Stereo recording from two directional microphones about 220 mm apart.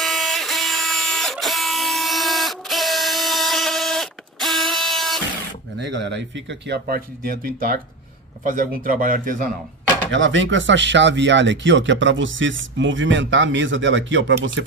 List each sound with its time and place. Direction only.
0.0 s printer: centre (ahead or behind)
5.8 s speech: 55° right (ahead or behind)
10.1 s speech: 60° right (ahead or behind)